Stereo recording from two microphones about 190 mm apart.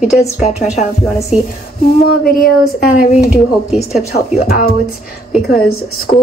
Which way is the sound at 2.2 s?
50° left (ahead or behind).